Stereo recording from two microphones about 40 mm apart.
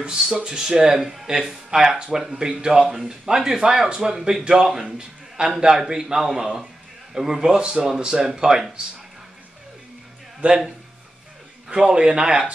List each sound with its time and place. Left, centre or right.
0.3 s a man's voice: centre
10.4 s speech: right
11.7 s speech: right